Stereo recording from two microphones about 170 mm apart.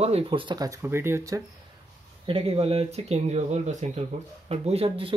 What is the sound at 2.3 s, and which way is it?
Speech, 35° right (ahead or behind).